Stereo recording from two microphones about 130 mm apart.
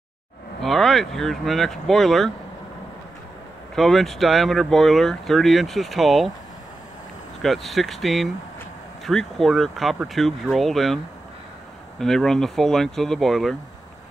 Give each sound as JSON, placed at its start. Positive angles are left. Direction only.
{"t": 0.6, "sound": "speech", "side_deg": 0}
{"t": 3.7, "sound": "speech", "side_deg": 0}
{"t": 7.4, "sound": "speech", "side_deg": 0}
{"t": 12.0, "sound": "speech", "side_deg": 5}